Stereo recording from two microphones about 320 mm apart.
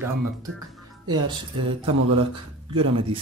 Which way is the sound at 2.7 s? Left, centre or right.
Right.